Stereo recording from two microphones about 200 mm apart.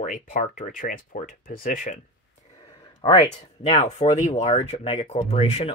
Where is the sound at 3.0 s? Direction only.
25° left (ahead or behind).